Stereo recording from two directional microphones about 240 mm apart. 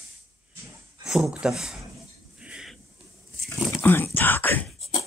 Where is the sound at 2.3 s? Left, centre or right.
Centre.